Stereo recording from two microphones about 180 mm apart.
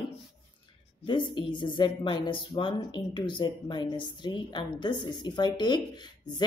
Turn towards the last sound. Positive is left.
turn(degrees=25)  # may be behind; listen again after turning